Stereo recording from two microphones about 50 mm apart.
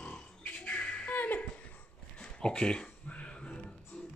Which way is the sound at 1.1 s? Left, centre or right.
Left.